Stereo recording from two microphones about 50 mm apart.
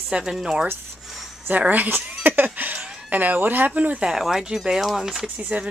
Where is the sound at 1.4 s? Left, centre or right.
Right.